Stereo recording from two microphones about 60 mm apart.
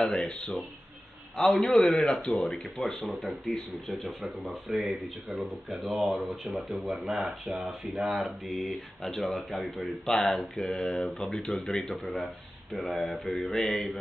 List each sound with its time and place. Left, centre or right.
0.0 s a man's voice: centre
1.7 s a man's voice: centre
2.4 s speech: centre